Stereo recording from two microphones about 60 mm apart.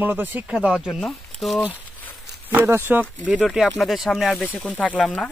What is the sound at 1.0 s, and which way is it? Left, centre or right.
Speech, centre.